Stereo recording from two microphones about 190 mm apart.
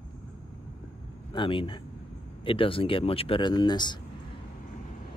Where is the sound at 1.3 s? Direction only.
25° left (ahead or behind).